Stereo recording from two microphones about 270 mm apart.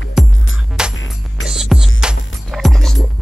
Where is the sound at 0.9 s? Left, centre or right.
Left.